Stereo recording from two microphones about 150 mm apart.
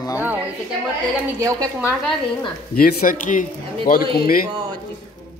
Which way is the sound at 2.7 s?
75° left (ahead or behind).